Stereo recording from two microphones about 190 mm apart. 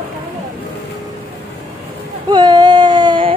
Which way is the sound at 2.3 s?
20° right (ahead or behind).